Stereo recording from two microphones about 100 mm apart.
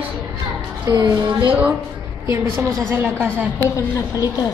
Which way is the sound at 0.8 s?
45° right (ahead or behind).